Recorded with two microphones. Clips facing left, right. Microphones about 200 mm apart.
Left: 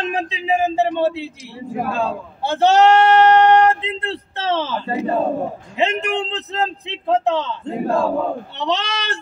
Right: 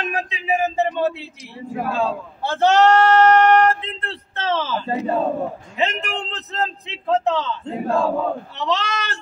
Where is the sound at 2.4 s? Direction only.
25° left (ahead or behind).